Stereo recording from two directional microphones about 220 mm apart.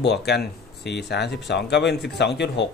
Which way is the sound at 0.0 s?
50° left (ahead or behind).